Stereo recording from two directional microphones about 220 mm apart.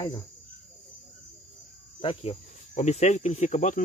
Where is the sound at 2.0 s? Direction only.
25° left (ahead or behind).